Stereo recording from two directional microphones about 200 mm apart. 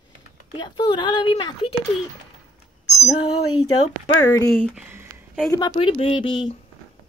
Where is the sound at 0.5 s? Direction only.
25° left (ahead or behind).